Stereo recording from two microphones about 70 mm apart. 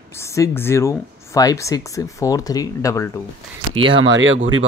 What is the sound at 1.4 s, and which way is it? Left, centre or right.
Speech, left.